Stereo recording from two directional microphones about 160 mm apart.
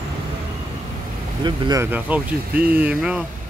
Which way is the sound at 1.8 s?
10° right (ahead or behind).